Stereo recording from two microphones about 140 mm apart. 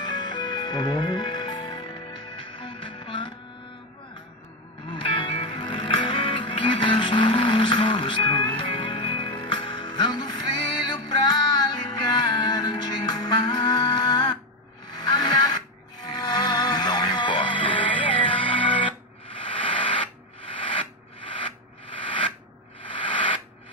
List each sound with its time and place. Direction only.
0.0 s music: 30° left (ahead or behind)
4.8 s music: 35° left (ahead or behind)
20.5 s rub: 35° left (ahead or behind)
22.8 s a sound: 35° left (ahead or behind)